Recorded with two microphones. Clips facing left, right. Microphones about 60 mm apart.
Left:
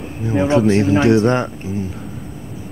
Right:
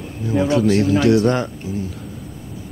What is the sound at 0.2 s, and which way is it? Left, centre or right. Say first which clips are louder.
A man's voice: left 2 dB; left.